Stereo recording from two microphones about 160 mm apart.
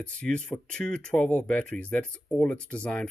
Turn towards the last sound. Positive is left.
turn(degrees=5)  # may be behind; listen again after turning